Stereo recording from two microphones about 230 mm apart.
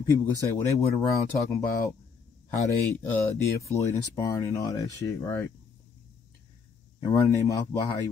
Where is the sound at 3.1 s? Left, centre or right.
Centre.